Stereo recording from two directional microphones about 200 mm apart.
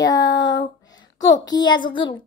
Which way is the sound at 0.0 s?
20° left (ahead or behind).